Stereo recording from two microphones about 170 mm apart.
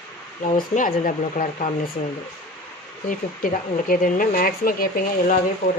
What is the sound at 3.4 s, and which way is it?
Speech, 55° left (ahead or behind).